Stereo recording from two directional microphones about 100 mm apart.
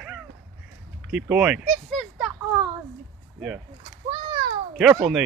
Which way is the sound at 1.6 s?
Centre (ahead or behind).